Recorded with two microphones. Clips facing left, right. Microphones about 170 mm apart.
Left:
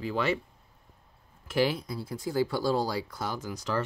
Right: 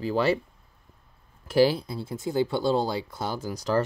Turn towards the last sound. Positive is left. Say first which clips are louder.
# right 5 dB
turn(degrees=-35)  # may be behind; listen again after turning